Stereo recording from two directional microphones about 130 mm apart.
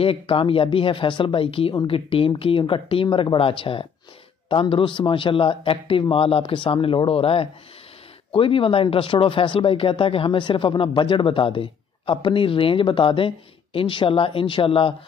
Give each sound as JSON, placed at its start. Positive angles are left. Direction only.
{"t": 0.0, "sound": "speech", "side_deg": 45}